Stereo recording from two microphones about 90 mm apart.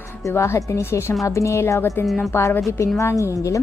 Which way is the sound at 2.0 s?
Centre (ahead or behind).